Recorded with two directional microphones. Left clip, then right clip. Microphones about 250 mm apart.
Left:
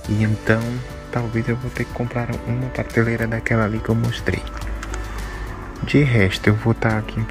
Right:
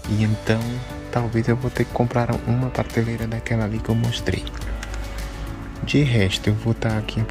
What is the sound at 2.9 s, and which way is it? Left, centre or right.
Speech, centre.